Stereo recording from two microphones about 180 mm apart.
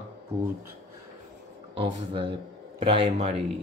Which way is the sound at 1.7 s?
30° right (ahead or behind).